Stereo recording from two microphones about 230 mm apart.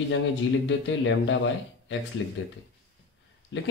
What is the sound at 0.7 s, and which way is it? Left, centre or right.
A man's voice, left.